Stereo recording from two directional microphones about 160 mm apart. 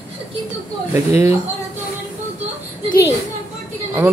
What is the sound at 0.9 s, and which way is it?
Speech, 15° right (ahead or behind).